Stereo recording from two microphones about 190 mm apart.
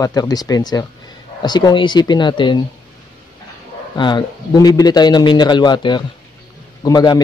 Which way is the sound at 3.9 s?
25° left (ahead or behind).